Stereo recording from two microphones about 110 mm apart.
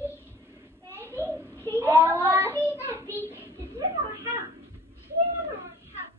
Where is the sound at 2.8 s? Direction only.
20° right (ahead or behind).